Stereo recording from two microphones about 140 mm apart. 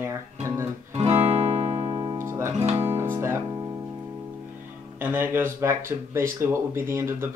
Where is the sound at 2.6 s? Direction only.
50° right (ahead or behind).